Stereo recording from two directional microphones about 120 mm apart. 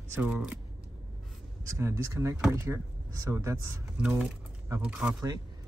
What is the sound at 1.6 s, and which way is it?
Speech, 25° right (ahead or behind).